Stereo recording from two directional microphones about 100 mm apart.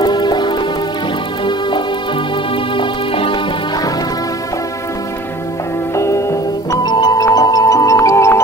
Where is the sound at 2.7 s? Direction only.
60° left (ahead or behind).